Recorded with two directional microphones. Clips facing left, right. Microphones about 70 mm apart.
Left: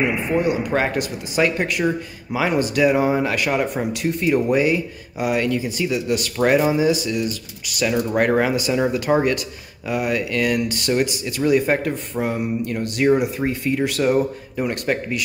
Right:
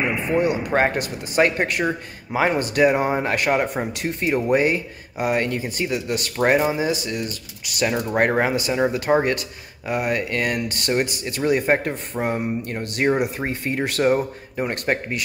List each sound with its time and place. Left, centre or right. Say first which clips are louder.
0.4 s speech: right 2 dB; right